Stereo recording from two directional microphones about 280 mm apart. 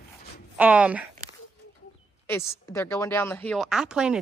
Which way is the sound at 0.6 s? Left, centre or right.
Centre.